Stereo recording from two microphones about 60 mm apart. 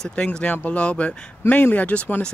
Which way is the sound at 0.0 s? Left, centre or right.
Centre.